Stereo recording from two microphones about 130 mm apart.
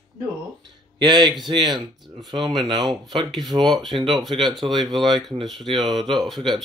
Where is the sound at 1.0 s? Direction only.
35° right (ahead or behind).